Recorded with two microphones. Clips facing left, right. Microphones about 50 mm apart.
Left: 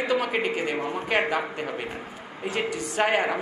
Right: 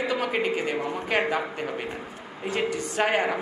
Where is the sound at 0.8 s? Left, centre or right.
Left.